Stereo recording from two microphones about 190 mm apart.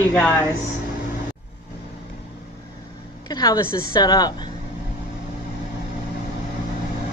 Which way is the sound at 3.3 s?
20° left (ahead or behind).